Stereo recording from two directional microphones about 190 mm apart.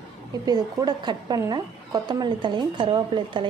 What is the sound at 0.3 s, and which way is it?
Speech, 20° right (ahead or behind).